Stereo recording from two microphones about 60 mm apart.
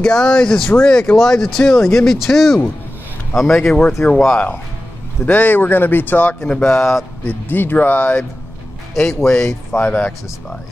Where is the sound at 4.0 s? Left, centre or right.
Left.